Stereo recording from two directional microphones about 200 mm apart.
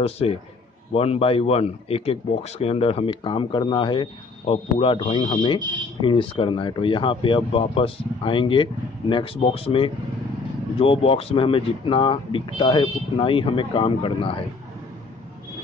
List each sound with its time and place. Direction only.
0.0 s a man's voice: 30° left (ahead or behind)